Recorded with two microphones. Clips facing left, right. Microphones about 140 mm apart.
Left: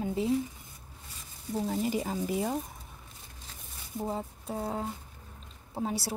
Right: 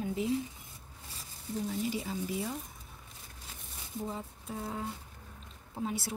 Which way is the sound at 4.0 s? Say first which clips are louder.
Left 5 dB; 35° left (ahead or behind).